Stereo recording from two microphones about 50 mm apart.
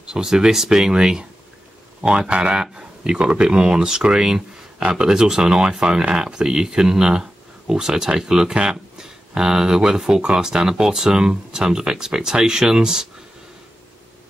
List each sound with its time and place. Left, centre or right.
0.1 s speech: centre